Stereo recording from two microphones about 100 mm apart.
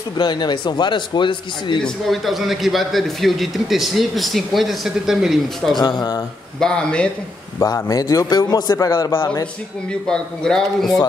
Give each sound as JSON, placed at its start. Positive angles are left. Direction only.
{"t": 0.2, "sound": "speech", "side_deg": 50}
{"t": 1.8, "sound": "a man's voice", "side_deg": 5}
{"t": 5.8, "sound": "a man's voice", "side_deg": 40}
{"t": 6.6, "sound": "speech", "side_deg": 10}
{"t": 7.5, "sound": "a man's voice", "side_deg": 35}
{"t": 9.8, "sound": "speech", "side_deg": 10}